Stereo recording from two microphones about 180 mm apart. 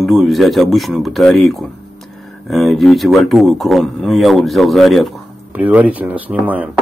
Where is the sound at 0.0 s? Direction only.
Centre (ahead or behind).